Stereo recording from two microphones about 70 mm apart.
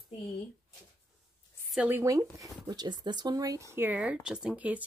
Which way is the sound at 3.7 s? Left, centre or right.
Right.